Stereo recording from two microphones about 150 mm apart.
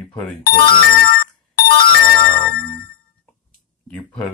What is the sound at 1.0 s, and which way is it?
Ringtone, 75° left (ahead or behind).